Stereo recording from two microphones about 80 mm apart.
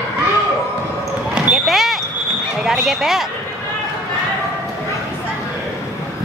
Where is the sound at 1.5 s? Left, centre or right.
Centre.